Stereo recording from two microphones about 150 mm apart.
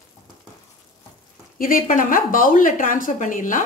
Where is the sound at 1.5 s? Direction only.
70° left (ahead or behind).